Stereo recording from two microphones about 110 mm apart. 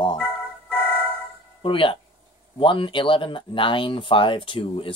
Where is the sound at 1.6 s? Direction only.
50° left (ahead or behind).